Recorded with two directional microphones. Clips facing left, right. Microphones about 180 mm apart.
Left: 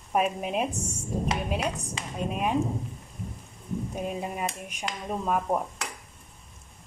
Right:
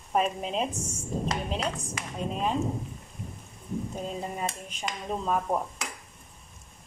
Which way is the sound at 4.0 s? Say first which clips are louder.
Left 4 dB; 10° left (ahead or behind).